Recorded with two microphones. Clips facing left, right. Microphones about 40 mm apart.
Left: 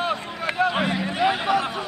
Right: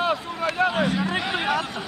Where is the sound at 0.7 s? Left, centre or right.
Left.